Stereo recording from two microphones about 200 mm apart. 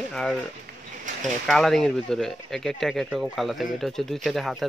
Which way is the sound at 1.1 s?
40° right (ahead or behind).